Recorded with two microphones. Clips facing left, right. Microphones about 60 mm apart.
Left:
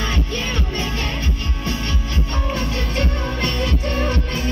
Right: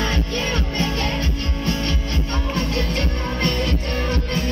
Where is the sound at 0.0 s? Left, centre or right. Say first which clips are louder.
Right 1 dB; right.